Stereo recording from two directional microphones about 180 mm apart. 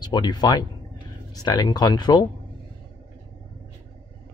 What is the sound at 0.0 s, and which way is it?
Speech, 25° left (ahead or behind).